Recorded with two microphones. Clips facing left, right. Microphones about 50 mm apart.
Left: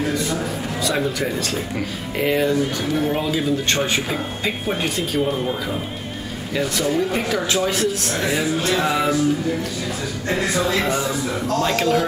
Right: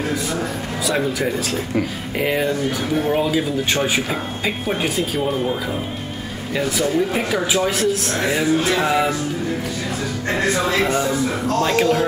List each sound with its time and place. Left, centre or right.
0.8 s speech: centre
10.8 s speech: right
11.6 s speech: centre